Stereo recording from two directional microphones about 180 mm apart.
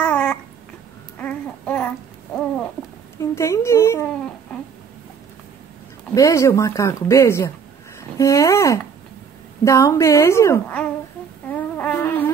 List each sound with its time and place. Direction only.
0.0 s babbling: 5° left (ahead or behind)
3.2 s speech: 15° left (ahead or behind)
6.1 s speech: 15° left (ahead or behind)
11.5 s a sound: 10° left (ahead or behind)